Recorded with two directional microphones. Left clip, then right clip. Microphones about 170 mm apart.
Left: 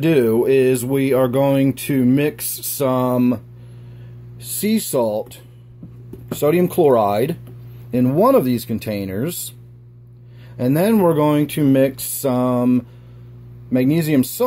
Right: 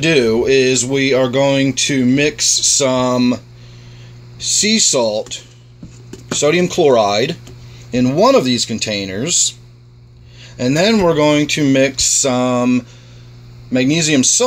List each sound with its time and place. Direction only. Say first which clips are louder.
0.0 s speech: right 3 dB; 5° left (ahead or behind)
4.4 s speech: right 9 dB; 5° left (ahead or behind)
10.4 s speech: right 4 dB; 5° left (ahead or behind)